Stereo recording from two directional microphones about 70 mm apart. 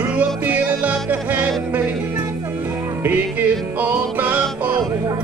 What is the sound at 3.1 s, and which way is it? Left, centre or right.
Music, right.